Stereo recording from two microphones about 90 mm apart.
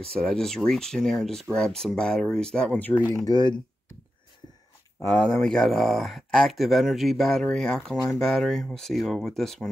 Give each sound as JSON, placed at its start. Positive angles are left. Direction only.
{"t": 0.0, "sound": "speech", "side_deg": 10}
{"t": 2.8, "sound": "speech", "side_deg": 20}
{"t": 3.3, "sound": "speech", "side_deg": 55}
{"t": 5.1, "sound": "speech", "side_deg": 10}